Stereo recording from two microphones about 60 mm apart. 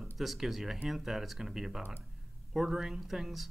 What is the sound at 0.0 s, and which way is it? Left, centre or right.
Speech, centre.